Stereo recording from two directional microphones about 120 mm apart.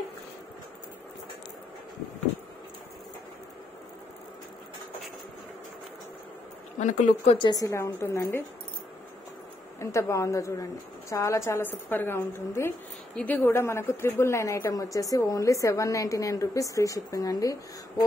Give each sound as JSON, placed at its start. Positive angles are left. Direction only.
{"t": 6.8, "sound": "speech", "side_deg": 90}
{"t": 7.5, "sound": "a woman's voice", "side_deg": 25}
{"t": 9.8, "sound": "a woman's voice", "side_deg": 25}